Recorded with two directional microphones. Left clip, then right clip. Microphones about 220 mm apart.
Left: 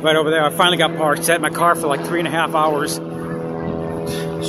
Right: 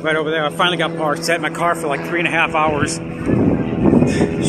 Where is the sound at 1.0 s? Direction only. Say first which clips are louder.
Left 1 dB; 15° left (ahead or behind).